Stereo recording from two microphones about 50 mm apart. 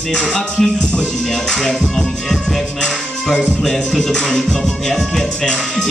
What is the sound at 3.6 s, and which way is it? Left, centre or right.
Music, centre.